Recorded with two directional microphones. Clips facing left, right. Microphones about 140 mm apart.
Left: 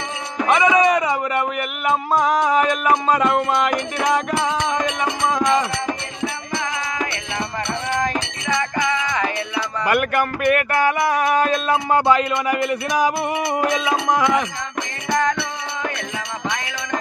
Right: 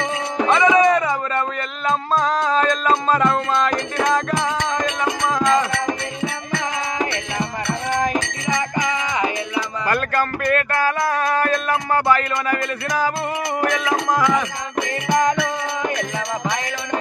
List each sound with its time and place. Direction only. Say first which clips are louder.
0.5 s a sound: right 1 dB; 15° left (ahead or behind)
1.9 s music: left 1 dB; 15° left (ahead or behind)
9.8 s music: left 3 dB; 15° left (ahead or behind)